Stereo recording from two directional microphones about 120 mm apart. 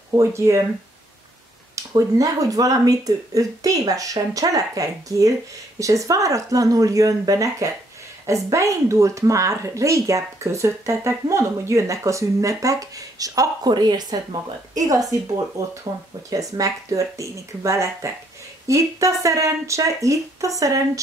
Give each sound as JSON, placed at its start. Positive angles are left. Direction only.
{"t": 0.1, "sound": "speech", "side_deg": -25}
{"t": 1.8, "sound": "speech", "side_deg": -25}